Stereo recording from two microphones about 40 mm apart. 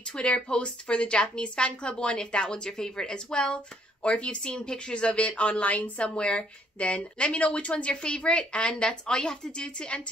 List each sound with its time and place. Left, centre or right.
0.1 s a woman's voice: left
5.9 s a woman's voice: left
8.8 s a woman's voice: centre